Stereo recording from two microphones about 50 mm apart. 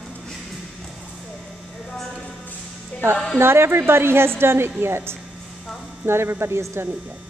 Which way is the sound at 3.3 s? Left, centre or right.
Right.